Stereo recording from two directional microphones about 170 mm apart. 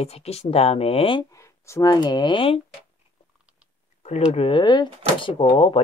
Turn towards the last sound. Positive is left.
turn(degrees=30)  # may be behind; listen again after turning